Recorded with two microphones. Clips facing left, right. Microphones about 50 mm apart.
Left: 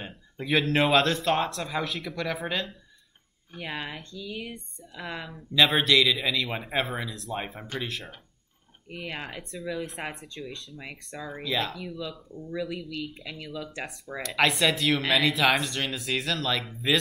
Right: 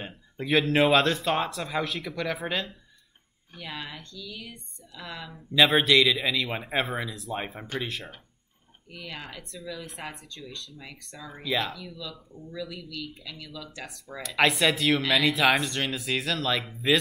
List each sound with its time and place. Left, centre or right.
0.0 s speech: centre
3.5 s speech: left
5.5 s speech: centre
8.9 s speech: left
9.4 s speech: centre
10.0 s speech: left
11.4 s speech: centre
12.0 s speech: left
14.2 s speech: centre